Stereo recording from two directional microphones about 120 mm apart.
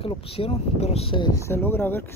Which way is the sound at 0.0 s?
50° left (ahead or behind).